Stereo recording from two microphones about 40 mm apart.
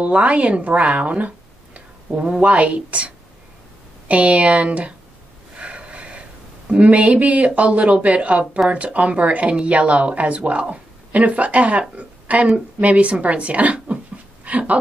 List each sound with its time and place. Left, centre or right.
0.0 s speech: right
4.1 s speech: right
5.6 s snort: right
6.7 s speech: right
12.0 s a sound: right
12.8 s speech: right